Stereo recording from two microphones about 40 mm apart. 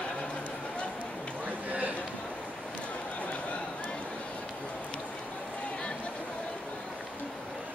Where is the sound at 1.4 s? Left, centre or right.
Right.